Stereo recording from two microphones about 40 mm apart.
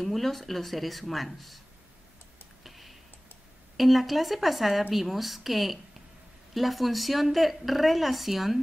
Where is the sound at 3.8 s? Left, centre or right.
Centre.